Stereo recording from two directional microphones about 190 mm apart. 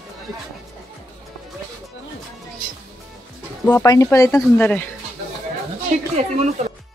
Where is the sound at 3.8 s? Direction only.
15° left (ahead or behind).